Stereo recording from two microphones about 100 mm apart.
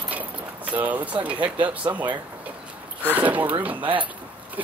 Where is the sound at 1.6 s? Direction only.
15° right (ahead or behind).